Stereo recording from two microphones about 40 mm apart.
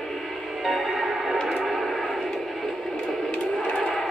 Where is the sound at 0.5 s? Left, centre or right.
Centre.